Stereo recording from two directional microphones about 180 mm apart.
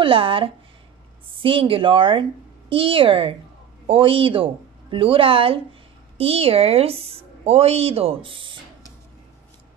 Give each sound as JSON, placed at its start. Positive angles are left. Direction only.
{"t": 0.0, "sound": "a woman's voice", "side_deg": -30}